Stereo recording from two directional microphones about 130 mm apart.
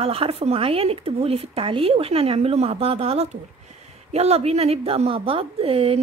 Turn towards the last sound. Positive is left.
turn(degrees=-50)  # may be behind; listen again after turning